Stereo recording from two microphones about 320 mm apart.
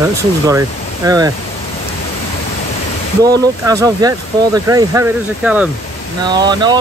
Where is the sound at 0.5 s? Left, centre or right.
Centre.